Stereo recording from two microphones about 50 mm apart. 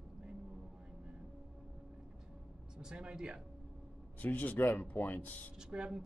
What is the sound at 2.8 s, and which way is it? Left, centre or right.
Speech, centre.